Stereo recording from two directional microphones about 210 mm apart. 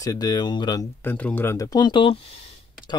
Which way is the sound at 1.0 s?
5° left (ahead or behind).